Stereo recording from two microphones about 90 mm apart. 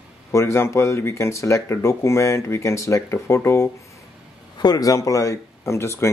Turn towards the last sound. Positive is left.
turn(degrees=30)  # may be behind; listen again after turning